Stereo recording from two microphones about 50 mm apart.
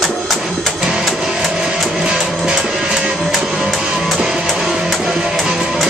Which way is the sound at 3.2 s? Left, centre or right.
Centre.